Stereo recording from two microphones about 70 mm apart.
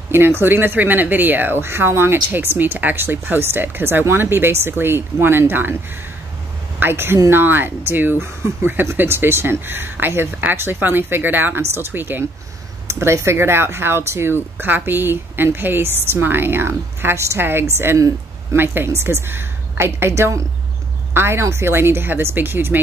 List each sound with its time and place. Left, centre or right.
0.1 s speech: right
6.8 s speech: right
12.8 s speech: right
17.9 s speech: right
18.6 s speech: right